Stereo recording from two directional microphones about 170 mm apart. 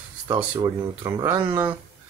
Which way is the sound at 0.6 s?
25° right (ahead or behind).